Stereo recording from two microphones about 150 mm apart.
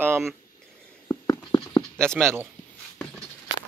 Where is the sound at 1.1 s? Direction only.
20° left (ahead or behind).